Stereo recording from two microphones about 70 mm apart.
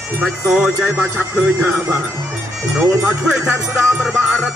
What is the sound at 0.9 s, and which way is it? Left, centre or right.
Speech, right.